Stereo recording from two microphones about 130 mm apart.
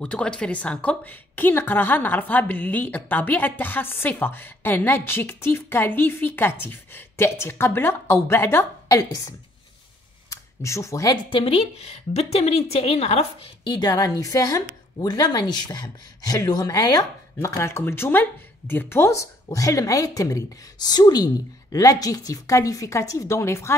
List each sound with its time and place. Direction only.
0.0 s a woman's voice: 5° left (ahead or behind); by 9.3 s 25° left (ahead or behind)
10.3 s speech: 25° left (ahead or behind)
11.2 s a woman's voice: 45° left (ahead or behind)
13.7 s a woman's voice: 30° left (ahead or behind)